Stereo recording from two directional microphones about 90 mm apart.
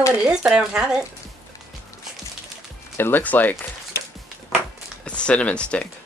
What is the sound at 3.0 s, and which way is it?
Speech, 20° left (ahead or behind).